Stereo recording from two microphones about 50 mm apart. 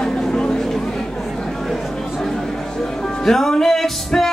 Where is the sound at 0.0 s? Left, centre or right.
Centre.